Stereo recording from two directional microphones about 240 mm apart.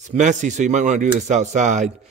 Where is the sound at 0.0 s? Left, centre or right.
Right.